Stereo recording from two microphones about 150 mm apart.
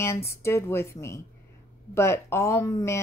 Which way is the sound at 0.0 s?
15° left (ahead or behind).